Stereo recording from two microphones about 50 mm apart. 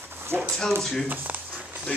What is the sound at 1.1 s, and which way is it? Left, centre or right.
Speech, right.